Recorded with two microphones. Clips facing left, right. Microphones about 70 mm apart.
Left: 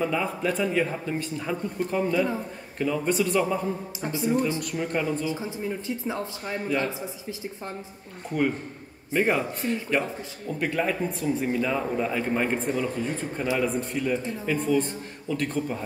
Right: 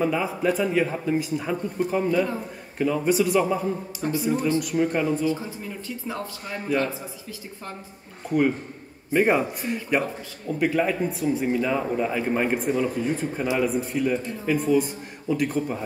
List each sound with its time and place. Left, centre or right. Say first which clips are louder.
0.0 s a man's voice: right 3 dB; centre
5.2 s speech: right 3 dB; centre
9.1 s a man's voice: right 3 dB; centre